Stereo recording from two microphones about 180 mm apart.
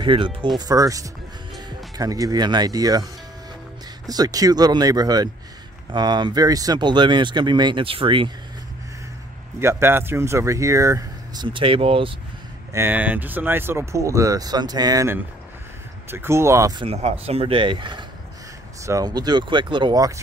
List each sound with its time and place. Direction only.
0.0 s speech: 25° right (ahead or behind)
9.6 s speech: 15° right (ahead or behind); by 12.2 s 30° right (ahead or behind)
12.7 s speech: 10° right (ahead or behind)
16.8 s speech: 35° right (ahead or behind)